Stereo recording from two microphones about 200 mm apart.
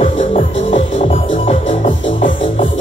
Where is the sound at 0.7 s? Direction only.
30° left (ahead or behind).